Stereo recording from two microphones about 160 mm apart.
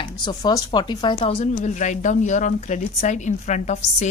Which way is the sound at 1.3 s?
45° left (ahead or behind).